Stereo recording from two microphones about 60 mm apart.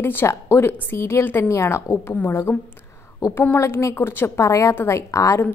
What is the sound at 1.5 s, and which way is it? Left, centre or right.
Speech, left.